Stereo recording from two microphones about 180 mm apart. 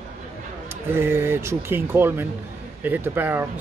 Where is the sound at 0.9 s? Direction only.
15° right (ahead or behind).